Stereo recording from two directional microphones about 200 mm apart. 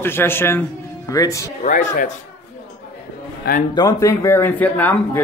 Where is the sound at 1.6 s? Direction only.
40° left (ahead or behind).